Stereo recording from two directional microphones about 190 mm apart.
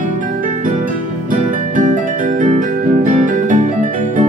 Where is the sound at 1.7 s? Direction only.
45° right (ahead or behind).